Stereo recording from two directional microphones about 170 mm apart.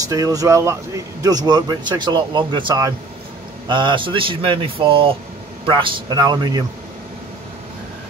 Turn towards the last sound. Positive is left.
turn(degrees=-25)  # may be behind; listen again after turning